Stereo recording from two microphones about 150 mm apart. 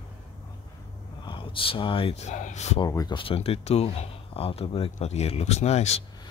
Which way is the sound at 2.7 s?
25° left (ahead or behind).